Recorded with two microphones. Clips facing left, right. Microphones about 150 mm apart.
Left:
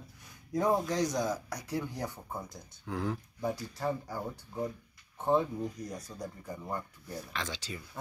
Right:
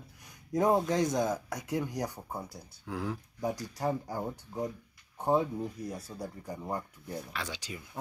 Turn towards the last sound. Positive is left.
turn(degrees=-10)  # may be behind; listen again after turning